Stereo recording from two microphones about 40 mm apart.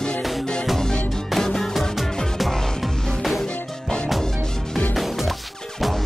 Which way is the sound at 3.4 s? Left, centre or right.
Left.